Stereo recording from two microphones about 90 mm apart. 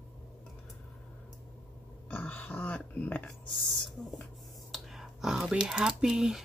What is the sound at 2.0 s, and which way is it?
Speech, 20° left (ahead or behind).